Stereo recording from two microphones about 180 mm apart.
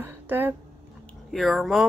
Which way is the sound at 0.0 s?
10° right (ahead or behind).